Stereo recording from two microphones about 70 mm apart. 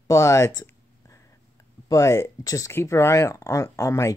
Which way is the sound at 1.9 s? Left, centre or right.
Left.